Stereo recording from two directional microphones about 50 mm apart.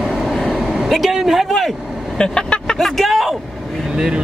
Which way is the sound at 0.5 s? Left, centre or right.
Centre.